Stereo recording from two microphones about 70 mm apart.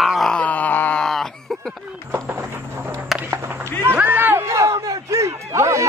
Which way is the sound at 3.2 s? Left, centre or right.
Right.